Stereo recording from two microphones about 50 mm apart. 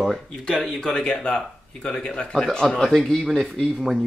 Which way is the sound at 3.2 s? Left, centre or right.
Centre.